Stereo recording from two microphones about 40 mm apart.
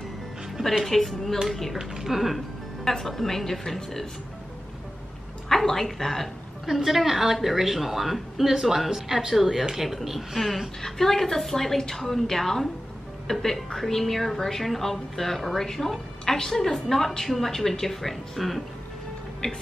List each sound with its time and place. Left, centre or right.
0.8 s speech: centre
1.8 s speech: centre
5.5 s speech: centre
6.6 s speech: centre
19.4 s speech: left